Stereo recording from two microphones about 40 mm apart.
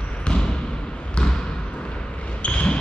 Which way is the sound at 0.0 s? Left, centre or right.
Left.